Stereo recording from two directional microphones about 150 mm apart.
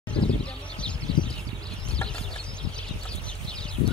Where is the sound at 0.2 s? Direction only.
5° left (ahead or behind).